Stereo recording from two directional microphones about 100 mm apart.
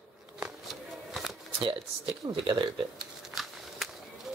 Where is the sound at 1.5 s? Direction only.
55° right (ahead or behind).